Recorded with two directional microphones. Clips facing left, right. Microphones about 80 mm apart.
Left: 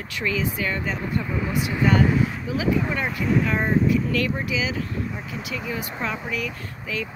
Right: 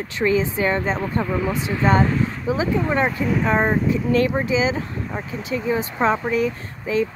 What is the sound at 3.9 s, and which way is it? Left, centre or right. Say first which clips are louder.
Speech: right 4 dB; right.